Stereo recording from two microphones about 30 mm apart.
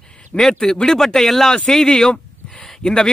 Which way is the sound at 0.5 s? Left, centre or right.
Centre.